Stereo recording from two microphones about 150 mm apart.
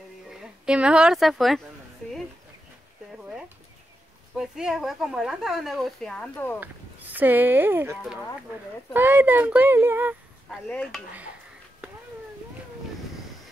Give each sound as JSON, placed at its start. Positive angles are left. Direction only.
{"t": 0.3, "sound": "speech", "side_deg": -5}
{"t": 3.1, "sound": "a sound", "side_deg": -5}
{"t": 4.4, "sound": "a woman's voice", "side_deg": -5}
{"t": 6.6, "sound": "speech", "side_deg": -10}
{"t": 10.5, "sound": "a woman's voice", "side_deg": 5}